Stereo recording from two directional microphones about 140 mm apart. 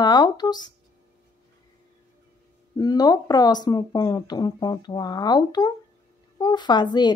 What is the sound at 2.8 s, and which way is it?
Speech, 25° left (ahead or behind).